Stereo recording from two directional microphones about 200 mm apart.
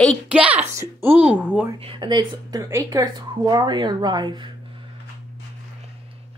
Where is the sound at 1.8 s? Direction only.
25° right (ahead or behind).